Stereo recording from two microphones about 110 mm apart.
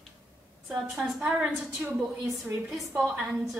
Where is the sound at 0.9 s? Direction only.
5° right (ahead or behind).